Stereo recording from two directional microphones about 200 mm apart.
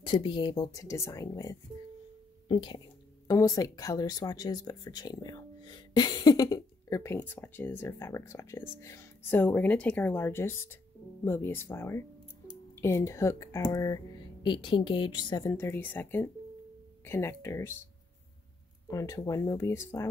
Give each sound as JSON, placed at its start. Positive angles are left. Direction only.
{"t": 0.0, "sound": "speech", "side_deg": 25}
{"t": 18.9, "sound": "speech", "side_deg": 15}